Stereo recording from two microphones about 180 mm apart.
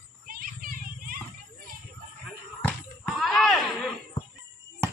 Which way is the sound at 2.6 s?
5° left (ahead or behind).